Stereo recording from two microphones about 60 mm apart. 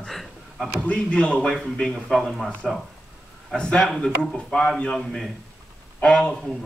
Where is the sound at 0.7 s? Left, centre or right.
Centre.